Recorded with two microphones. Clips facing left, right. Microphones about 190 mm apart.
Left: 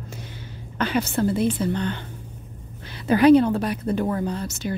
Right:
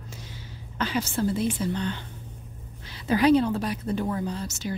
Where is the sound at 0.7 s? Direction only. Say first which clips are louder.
Left 4 dB; 60° left (ahead or behind).